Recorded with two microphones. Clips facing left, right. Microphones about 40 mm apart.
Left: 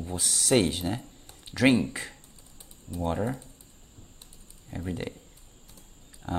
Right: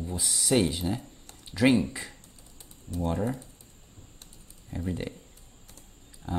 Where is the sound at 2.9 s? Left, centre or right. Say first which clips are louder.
Even; centre.